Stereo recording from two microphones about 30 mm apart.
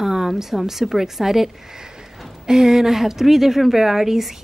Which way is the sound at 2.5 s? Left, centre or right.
Centre.